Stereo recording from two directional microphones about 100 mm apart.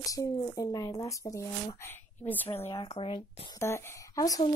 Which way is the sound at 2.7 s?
65° left (ahead or behind).